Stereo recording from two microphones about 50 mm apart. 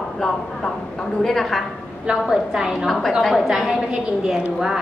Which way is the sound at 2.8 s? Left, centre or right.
Centre.